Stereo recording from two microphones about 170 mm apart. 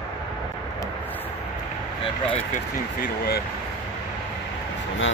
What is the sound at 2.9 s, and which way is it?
Speech, 65° left (ahead or behind).